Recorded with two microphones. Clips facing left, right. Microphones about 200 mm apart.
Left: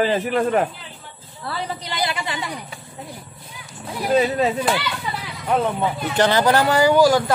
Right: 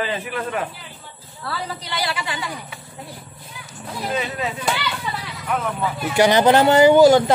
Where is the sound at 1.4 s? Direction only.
20° left (ahead or behind).